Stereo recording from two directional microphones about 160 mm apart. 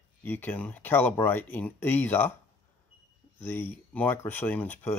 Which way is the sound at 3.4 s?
10° left (ahead or behind).